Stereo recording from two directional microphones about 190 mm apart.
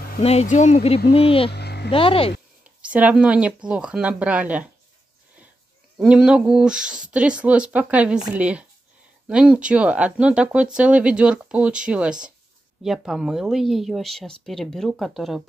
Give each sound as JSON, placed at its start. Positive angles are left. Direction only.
{"t": 0.2, "sound": "speech", "side_deg": 35}
{"t": 1.5, "sound": "a sound", "side_deg": 60}
{"t": 1.9, "sound": "speech", "side_deg": 30}
{"t": 2.9, "sound": "speech", "side_deg": -5}
{"t": 5.9, "sound": "speech", "side_deg": -5}